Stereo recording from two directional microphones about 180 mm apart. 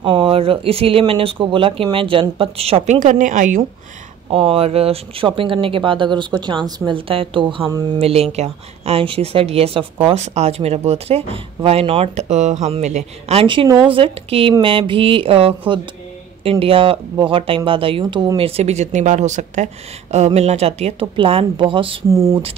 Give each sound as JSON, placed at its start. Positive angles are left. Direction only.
{"t": 0.0, "sound": "speech", "side_deg": -30}
{"t": 4.3, "sound": "speech", "side_deg": -30}
{"t": 8.1, "sound": "speech", "side_deg": -35}
{"t": 22.1, "sound": "speech", "side_deg": -20}